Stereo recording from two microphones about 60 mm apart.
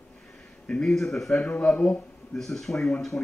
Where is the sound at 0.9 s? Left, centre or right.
Centre.